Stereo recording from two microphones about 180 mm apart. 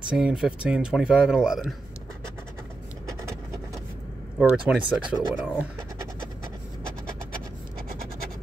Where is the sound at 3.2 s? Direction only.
15° right (ahead or behind).